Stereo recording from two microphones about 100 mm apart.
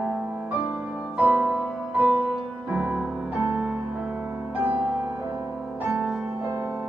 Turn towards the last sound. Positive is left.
turn(degrees=-25)  # may be behind; listen again after turning